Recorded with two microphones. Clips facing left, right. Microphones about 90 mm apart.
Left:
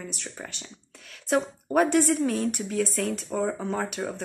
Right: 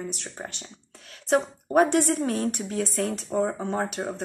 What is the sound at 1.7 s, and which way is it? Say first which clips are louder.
A woman's voice: right 1 dB; 40° right (ahead or behind).